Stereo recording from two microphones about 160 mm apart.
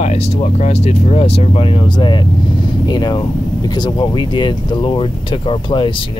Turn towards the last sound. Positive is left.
turn(degrees=30)  # may be behind; listen again after turning